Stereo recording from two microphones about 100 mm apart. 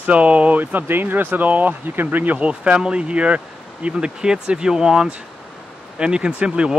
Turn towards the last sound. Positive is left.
turn(degrees=-10)  # may be behind; listen again after turning